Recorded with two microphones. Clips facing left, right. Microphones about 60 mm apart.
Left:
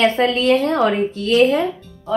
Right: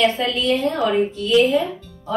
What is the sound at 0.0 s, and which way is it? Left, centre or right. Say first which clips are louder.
A woman's voice: left 3 dB; left.